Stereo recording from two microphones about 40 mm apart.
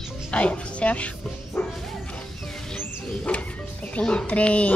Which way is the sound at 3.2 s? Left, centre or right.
Left.